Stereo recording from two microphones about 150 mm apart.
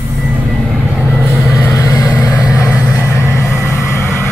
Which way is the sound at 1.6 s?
20° left (ahead or behind).